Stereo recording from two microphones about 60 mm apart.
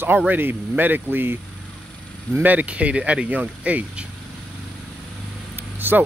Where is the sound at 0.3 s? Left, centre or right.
Right.